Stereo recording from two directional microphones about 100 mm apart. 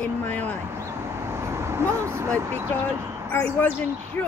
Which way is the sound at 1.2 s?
25° right (ahead or behind).